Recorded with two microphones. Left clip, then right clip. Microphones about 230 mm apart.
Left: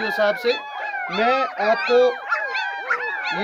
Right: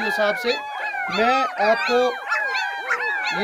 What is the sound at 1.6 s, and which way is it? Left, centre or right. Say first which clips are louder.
Speech: even; right.